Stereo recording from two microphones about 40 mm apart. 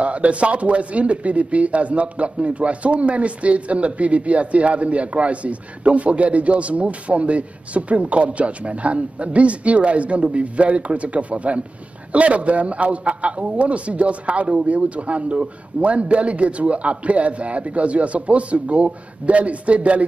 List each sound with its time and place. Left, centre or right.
0.0 s speech: right